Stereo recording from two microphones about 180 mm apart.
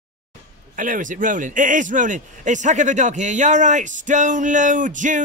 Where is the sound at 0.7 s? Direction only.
50° right (ahead or behind).